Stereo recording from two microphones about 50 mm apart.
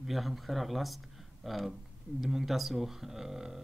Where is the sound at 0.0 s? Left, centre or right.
Centre.